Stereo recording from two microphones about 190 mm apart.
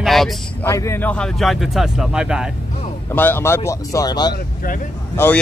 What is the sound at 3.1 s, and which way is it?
Speech, 10° left (ahead or behind).